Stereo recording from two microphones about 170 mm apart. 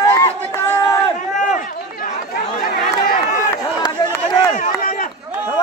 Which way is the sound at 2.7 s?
60° left (ahead or behind).